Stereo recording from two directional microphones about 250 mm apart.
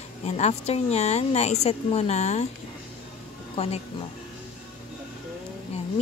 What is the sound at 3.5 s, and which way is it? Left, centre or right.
Speech, left.